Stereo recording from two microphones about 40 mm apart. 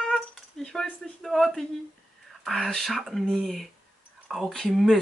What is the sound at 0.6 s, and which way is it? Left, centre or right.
Speech, centre.